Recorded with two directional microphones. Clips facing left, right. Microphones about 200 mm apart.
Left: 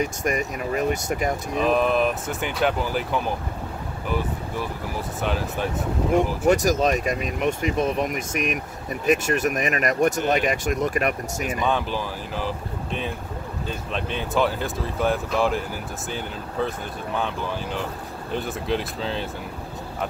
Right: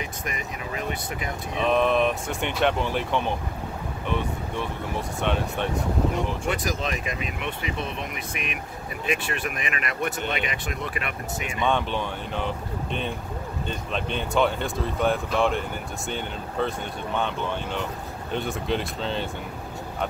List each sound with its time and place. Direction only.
0.0 s speech: 45° left (ahead or behind)
1.5 s speech: 5° left (ahead or behind)
6.4 s speech: 45° left (ahead or behind)
11.6 s speech: 5° left (ahead or behind)